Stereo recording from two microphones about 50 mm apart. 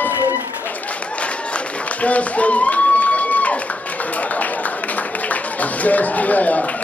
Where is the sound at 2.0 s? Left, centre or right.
Left.